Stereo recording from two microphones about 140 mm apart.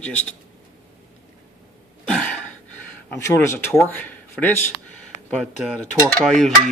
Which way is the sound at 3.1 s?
20° left (ahead or behind).